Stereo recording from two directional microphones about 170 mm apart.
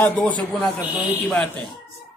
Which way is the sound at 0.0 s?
5° left (ahead or behind).